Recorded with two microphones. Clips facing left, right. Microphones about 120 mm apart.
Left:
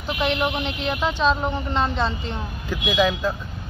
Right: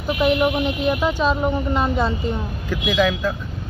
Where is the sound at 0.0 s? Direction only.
10° right (ahead or behind).